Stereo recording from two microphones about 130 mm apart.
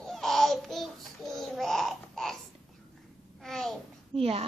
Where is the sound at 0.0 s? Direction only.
Centre (ahead or behind).